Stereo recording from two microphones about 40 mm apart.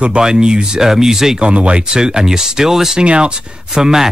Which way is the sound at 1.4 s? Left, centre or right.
Right.